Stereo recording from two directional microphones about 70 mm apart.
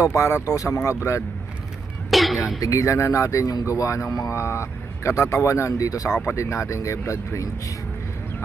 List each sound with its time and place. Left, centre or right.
0.0 s speech: left
2.0 s throat clearing: centre
2.6 s speech: left
6.2 s speech: left